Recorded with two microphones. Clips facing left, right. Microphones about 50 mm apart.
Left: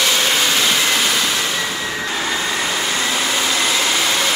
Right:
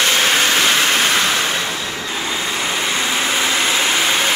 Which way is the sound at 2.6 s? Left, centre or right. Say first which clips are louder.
Even; right.